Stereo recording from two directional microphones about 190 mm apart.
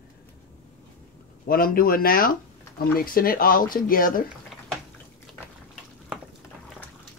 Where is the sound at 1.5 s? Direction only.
50° left (ahead or behind).